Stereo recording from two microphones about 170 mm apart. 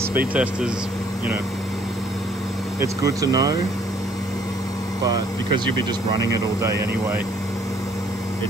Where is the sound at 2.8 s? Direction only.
20° right (ahead or behind).